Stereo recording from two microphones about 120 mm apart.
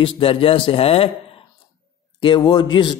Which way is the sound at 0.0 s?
50° left (ahead or behind).